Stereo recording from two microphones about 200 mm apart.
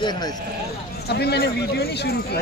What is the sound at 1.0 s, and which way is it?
A man's voice, 55° left (ahead or behind).